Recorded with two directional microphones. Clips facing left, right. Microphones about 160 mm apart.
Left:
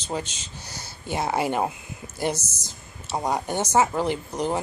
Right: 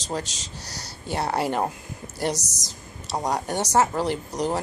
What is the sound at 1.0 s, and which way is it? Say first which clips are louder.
Speech: even; centre (ahead or behind).